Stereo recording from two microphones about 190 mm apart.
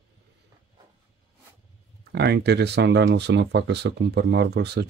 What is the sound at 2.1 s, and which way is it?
Speech, 60° right (ahead or behind).